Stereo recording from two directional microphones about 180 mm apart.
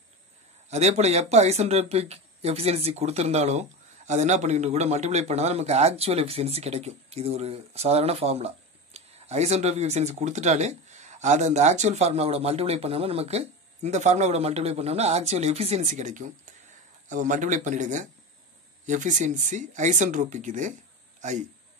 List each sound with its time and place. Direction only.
0.7 s speech: 40° right (ahead or behind)